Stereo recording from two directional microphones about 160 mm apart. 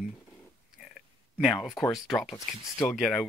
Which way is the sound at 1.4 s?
Centre (ahead or behind).